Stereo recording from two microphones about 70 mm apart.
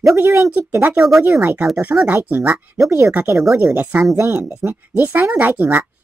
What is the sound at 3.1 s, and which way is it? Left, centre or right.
Speech, right.